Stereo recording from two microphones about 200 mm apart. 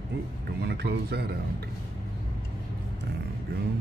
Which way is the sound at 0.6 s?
55° right (ahead or behind).